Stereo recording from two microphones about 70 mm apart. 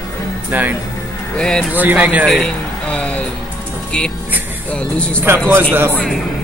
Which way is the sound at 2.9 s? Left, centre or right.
Centre.